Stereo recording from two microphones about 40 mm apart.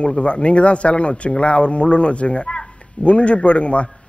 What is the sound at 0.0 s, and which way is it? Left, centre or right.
Speech, left.